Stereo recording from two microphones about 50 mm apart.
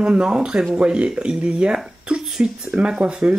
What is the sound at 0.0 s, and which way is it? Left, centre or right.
Speech, centre.